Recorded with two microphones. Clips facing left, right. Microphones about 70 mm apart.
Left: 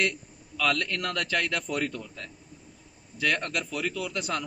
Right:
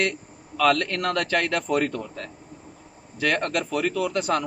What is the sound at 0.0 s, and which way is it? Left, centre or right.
A man's voice, right.